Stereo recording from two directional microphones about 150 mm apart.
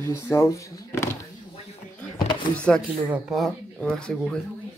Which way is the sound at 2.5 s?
10° left (ahead or behind).